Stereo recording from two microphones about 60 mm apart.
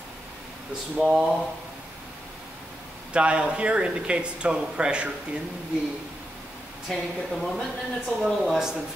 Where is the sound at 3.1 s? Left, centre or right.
Centre.